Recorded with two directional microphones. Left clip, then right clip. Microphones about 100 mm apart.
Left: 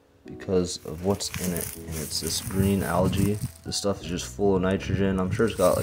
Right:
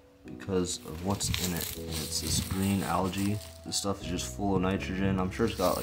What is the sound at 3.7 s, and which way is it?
Speech, 40° left (ahead or behind).